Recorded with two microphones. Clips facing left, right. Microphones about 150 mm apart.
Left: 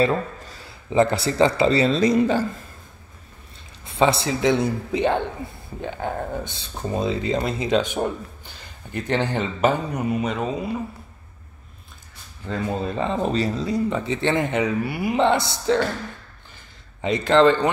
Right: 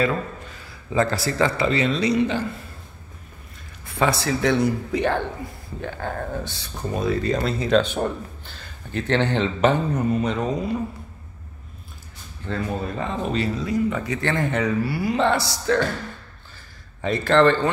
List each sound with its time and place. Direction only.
0.0 s a sound: 30° left (ahead or behind)
1.1 s speech: 25° left (ahead or behind); by 2.6 s 40° left (ahead or behind)
3.8 s speech: 25° left (ahead or behind); by 10.6 s 5° left (ahead or behind)
12.6 s speech: 25° left (ahead or behind)
17.0 s speech: 15° left (ahead or behind)